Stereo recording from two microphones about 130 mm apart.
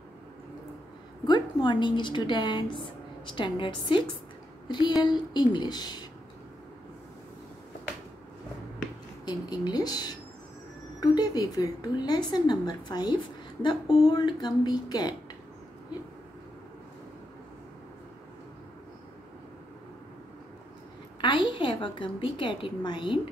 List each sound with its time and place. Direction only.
1.2 s a woman's voice: 35° left (ahead or behind)
9.2 s a woman's voice: 30° left (ahead or behind)
21.2 s a woman's voice: 40° left (ahead or behind)